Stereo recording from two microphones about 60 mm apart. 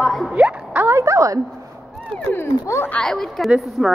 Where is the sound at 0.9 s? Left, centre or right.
Right.